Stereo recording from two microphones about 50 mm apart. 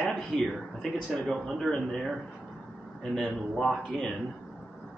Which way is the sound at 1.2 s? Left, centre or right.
Centre.